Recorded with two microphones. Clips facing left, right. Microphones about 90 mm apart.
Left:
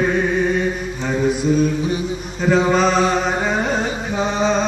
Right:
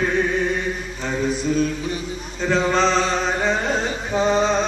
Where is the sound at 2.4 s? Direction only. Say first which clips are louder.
Left 3 dB; 10° left (ahead or behind).